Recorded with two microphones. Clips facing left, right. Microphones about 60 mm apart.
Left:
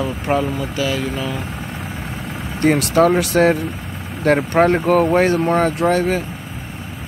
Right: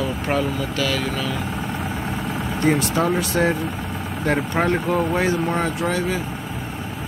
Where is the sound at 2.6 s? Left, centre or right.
Left.